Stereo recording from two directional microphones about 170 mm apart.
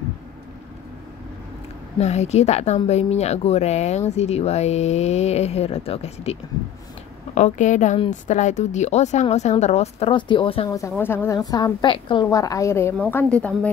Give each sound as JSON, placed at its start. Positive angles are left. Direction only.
{"t": 2.0, "sound": "a woman's voice", "side_deg": 40}
{"t": 7.3, "sound": "a woman's voice", "side_deg": 45}
{"t": 10.7, "sound": "a woman's voice", "side_deg": 15}